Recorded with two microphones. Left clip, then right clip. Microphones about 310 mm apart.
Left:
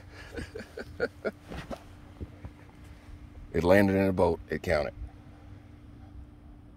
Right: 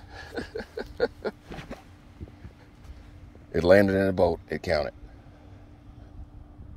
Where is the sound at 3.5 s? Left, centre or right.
Centre.